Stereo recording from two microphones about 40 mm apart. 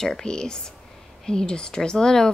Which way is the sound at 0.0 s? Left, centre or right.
Centre.